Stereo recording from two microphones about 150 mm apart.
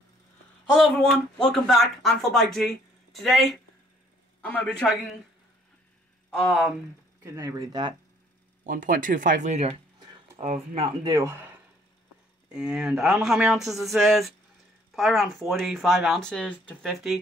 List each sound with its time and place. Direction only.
0.7 s a man's voice: centre (ahead or behind)
6.3 s speech: centre (ahead or behind)
7.2 s speech: 25° right (ahead or behind)
8.6 s speech: 65° right (ahead or behind); by 9.8 s 45° right (ahead or behind)
10.4 s speech: 60° right (ahead or behind)
11.1 s speech: 20° right (ahead or behind)
12.4 s speech: 5° right (ahead or behind)